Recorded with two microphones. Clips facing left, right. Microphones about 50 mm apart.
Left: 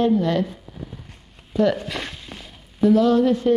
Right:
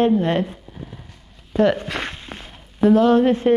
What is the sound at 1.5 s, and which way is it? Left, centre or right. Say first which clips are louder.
Speech: right 2 dB; right.